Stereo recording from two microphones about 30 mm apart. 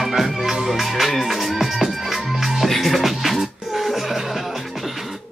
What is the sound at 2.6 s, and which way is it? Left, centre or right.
Music, centre.